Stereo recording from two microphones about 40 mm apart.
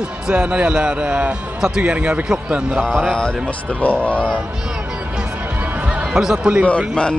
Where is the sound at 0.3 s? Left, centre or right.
Right.